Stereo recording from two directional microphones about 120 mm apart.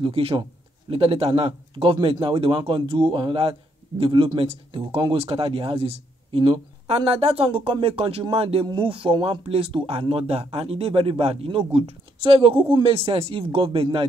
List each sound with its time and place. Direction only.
0.0 s speech: 50° right (ahead or behind)
7.1 s speech: 55° right (ahead or behind)